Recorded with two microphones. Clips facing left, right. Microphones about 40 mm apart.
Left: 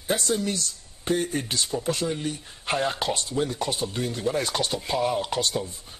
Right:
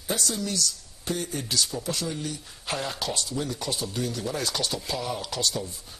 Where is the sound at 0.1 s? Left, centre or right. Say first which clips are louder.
Left 4 dB; left.